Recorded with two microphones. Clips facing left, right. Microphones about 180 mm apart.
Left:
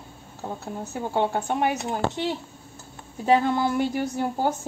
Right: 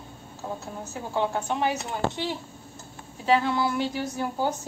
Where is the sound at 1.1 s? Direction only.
50° left (ahead or behind).